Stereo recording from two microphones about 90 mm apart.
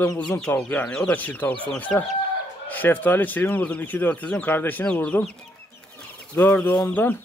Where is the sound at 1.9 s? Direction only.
5° left (ahead or behind).